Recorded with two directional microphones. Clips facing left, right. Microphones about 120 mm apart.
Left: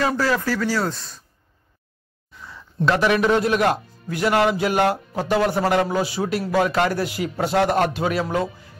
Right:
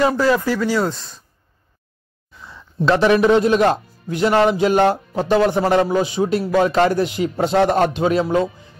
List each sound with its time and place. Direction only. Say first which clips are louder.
0.0 s speech: right 5 dB; 20° right (ahead or behind)
2.4 s speech: right 3 dB; 25° right (ahead or behind)